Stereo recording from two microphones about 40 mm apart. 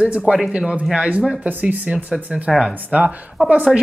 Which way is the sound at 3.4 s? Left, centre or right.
Right.